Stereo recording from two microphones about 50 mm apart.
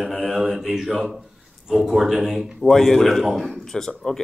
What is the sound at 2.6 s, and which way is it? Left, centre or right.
A man's voice, centre.